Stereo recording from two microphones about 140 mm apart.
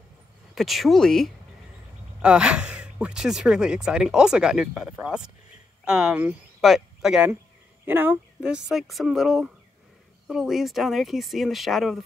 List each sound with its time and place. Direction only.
0.6 s speech: centre (ahead or behind)
7.8 s speech: 15° right (ahead or behind)